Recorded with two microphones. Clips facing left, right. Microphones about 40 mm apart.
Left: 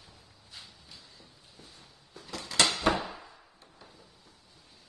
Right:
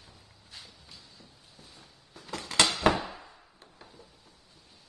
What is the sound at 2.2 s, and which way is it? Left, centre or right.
Dishes, right.